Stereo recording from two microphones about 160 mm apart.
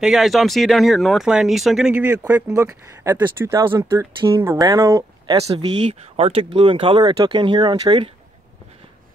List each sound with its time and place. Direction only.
0.0 s speech: centre (ahead or behind)
2.5 s speech: 20° right (ahead or behind)
5.4 s speech: 40° right (ahead or behind)